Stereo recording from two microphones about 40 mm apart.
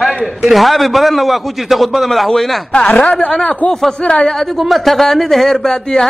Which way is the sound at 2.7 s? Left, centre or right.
Left.